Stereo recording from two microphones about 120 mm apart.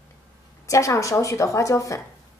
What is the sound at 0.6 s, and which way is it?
Speech, 25° left (ahead or behind).